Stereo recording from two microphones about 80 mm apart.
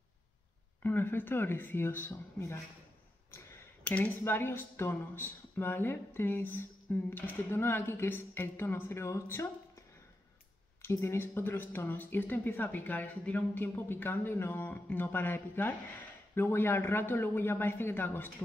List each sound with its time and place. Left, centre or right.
0.8 s speech: left
3.8 s speech: centre
4.2 s speech: left
10.8 s speech: left